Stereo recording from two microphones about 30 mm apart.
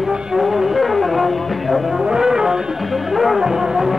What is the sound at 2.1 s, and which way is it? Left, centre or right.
Music, centre.